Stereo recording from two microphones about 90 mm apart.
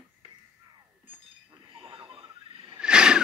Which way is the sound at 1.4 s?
90° right.